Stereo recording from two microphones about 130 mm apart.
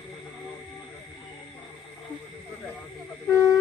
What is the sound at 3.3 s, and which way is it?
Speech, 25° left (ahead or behind).